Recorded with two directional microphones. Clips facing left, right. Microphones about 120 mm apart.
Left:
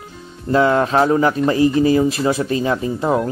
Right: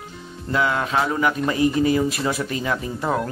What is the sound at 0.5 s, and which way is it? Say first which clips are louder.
Speech: left 7 dB; 35° left (ahead or behind).